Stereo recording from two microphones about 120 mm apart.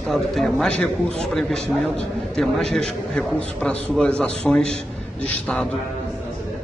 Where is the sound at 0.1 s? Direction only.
5° left (ahead or behind).